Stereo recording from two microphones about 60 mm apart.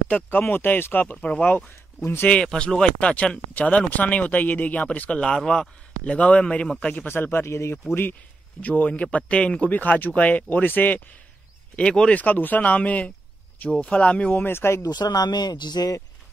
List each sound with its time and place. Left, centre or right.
0.3 s speech: left
1.2 s speech: left
2.4 s speech: centre
5.2 s a man's voice: centre
6.1 s speech: left
7.1 s speech: left
7.9 s speech: left
8.5 s speech: left
11.7 s speech: centre
12.1 s speech: left
14.4 s speech: left
14.8 s speech: left